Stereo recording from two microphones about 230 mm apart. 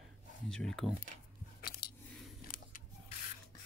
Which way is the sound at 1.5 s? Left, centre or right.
Left.